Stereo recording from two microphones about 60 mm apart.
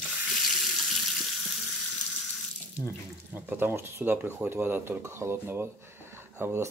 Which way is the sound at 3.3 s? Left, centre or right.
Right.